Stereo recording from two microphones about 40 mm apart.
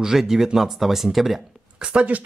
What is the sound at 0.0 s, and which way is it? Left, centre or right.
Speech, centre.